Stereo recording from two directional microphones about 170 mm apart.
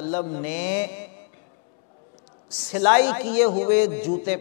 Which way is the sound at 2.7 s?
10° left (ahead or behind).